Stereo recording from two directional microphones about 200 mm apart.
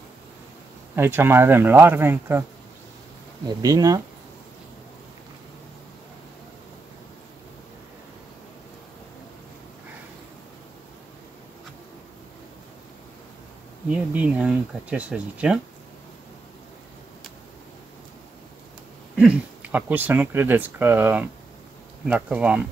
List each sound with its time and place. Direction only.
0.9 s speech: 10° right (ahead or behind)
3.4 s speech: 20° right (ahead or behind)
13.8 s speech: 5° right (ahead or behind)
19.1 s speech: 5° right (ahead or behind)